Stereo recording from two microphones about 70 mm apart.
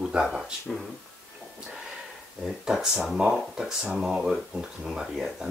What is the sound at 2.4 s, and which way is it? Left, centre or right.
Speech, centre.